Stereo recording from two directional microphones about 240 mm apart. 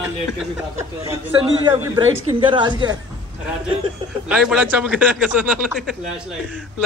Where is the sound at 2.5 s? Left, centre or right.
Centre.